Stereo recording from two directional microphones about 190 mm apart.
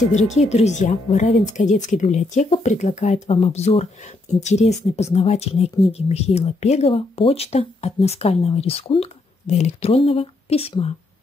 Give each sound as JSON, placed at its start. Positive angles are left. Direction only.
{"t": 0.1, "sound": "speech", "side_deg": 40}